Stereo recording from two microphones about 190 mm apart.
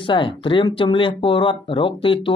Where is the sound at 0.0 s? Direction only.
25° left (ahead or behind).